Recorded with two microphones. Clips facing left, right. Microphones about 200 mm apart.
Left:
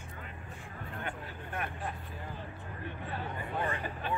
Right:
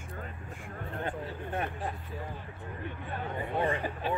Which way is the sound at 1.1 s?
25° right (ahead or behind).